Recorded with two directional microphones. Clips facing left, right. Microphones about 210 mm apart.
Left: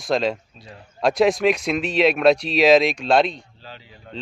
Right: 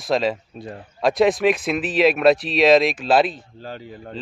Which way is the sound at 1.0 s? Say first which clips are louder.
Even; centre (ahead or behind).